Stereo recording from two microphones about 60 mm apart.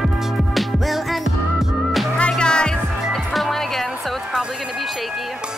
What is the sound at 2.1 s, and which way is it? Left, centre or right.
Music, centre.